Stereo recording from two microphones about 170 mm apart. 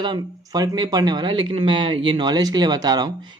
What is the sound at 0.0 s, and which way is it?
Speech, 25° right (ahead or behind).